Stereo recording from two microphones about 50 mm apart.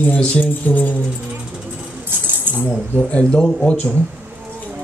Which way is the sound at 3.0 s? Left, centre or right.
Left.